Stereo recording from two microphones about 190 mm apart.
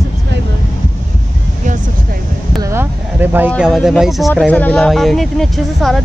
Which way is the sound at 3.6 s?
Centre (ahead or behind).